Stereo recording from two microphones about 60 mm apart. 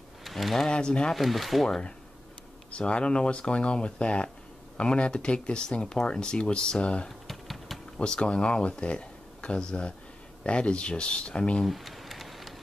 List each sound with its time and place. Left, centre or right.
0.2 s speech: centre
0.7 s speech: centre
1.1 s speech: centre
2.7 s speech: centre
7.1 s typing: centre
8.0 s speech: centre
11.6 s a sound: centre